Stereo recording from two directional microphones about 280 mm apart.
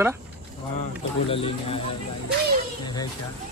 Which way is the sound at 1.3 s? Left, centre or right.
Centre.